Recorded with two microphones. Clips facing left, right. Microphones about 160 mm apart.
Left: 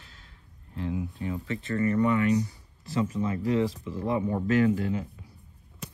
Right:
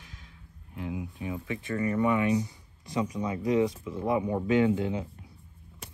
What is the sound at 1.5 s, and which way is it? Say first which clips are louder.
Speech: left 3 dB; 15° right (ahead or behind).